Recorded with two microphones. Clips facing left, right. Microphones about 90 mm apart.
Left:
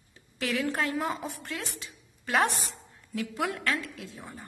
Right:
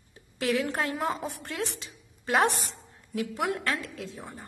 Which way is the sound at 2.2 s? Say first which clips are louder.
Right 2 dB; 30° right (ahead or behind).